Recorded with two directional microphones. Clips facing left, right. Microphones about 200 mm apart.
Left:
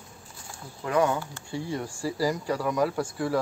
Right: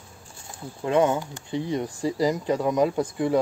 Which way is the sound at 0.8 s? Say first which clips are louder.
Right 3 dB; 25° right (ahead or behind).